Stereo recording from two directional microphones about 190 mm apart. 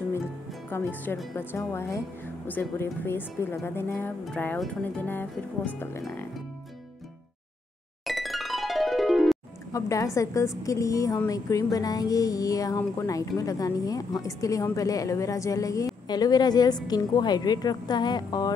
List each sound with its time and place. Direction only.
0.7 s speech: 10° left (ahead or behind)
8.0 s music: centre (ahead or behind)
9.7 s speech: 15° left (ahead or behind)
10.6 s music: 15° left (ahead or behind)